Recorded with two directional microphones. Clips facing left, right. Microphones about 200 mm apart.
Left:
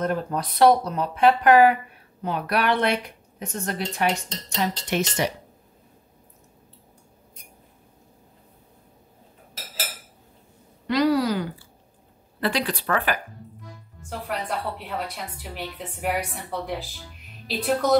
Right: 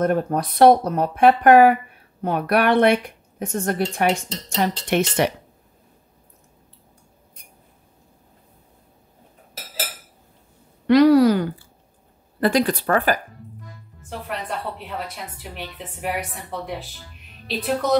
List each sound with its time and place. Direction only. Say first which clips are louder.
0.0 s a woman's voice: right 5 dB; 50° right (ahead or behind)
10.9 s a woman's voice: right 8 dB; 60° right (ahead or behind); by 13.2 s 40° right (ahead or behind)
14.0 s a woman's voice: even; centre (ahead or behind)